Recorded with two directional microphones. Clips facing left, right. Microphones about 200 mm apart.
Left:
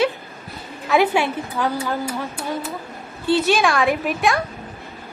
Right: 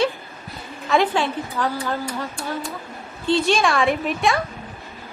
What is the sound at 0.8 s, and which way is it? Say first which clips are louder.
A woman's voice: left 2 dB; 5° left (ahead or behind).